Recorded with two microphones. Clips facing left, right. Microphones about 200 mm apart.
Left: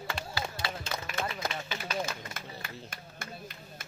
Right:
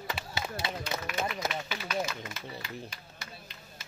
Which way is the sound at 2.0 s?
50° left (ahead or behind).